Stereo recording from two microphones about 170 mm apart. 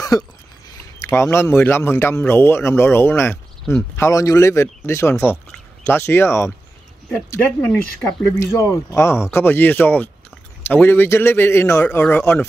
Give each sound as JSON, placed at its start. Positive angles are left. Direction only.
{"t": 0.1, "sound": "speech", "side_deg": 20}
{"t": 8.4, "sound": "speech", "side_deg": 20}